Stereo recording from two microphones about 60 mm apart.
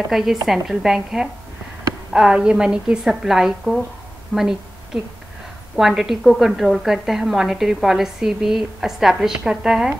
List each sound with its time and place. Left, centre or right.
0.1 s a woman's voice: centre